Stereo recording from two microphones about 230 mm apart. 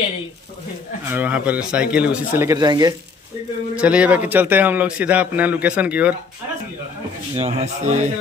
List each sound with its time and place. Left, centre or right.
1.1 s a man's voice: centre
3.7 s a man's voice: centre
7.3 s speech: right